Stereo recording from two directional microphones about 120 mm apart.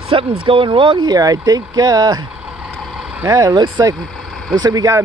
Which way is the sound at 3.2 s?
30° right (ahead or behind).